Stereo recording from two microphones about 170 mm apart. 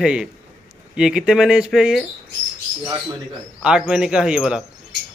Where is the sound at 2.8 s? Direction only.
25° right (ahead or behind).